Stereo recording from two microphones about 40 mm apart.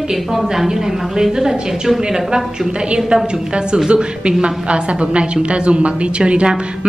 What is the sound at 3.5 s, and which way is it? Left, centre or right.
A woman's voice, right.